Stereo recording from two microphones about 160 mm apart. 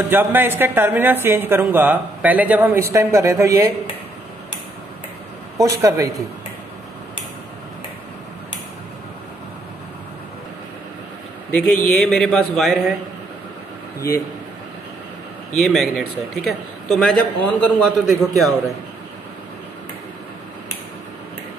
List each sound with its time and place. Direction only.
0.1 s a woman's voice: 10° right (ahead or behind)
5.6 s speech: 20° right (ahead or behind)
11.5 s a man's voice: 10° left (ahead or behind)
15.6 s a man's voice: centre (ahead or behind)